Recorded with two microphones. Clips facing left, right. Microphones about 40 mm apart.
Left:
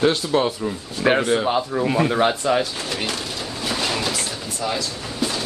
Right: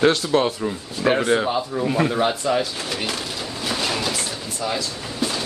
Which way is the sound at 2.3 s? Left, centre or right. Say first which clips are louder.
Left 1 dB; left.